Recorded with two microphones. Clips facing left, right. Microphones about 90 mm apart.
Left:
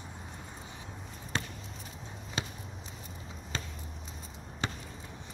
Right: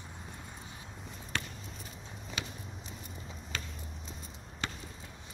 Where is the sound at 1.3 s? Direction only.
25° left (ahead or behind).